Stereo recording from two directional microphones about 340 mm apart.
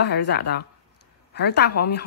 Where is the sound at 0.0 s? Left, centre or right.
Left.